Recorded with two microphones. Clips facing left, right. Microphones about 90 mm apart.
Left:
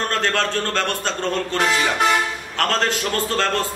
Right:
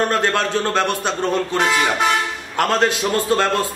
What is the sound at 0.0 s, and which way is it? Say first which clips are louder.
A man's voice: right 3 dB; 15° right (ahead or behind).